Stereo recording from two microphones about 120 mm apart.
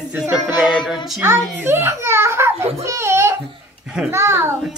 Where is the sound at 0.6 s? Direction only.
40° left (ahead or behind).